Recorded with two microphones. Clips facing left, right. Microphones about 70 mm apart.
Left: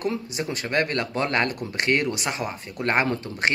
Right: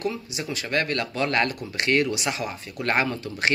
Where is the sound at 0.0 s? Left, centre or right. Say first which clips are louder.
Left 2 dB; left.